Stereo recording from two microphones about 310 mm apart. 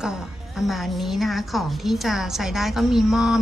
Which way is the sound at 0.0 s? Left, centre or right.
Centre.